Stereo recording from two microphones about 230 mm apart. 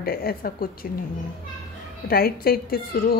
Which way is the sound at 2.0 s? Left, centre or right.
Left.